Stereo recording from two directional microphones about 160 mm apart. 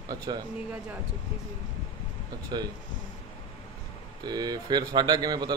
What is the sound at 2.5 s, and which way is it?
Speech, 30° right (ahead or behind).